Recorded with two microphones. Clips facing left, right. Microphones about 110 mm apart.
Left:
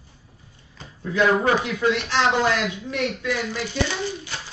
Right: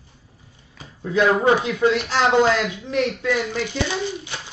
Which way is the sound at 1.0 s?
20° right (ahead or behind).